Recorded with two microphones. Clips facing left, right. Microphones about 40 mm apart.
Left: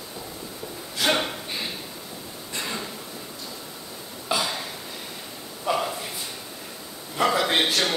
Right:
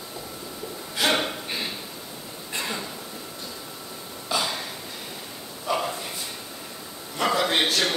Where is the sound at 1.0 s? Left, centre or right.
Centre.